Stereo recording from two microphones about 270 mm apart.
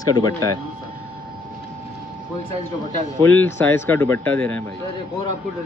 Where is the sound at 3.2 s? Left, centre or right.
Centre.